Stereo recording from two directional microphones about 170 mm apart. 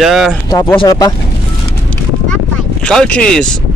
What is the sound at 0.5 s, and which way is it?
Speech, 15° left (ahead or behind).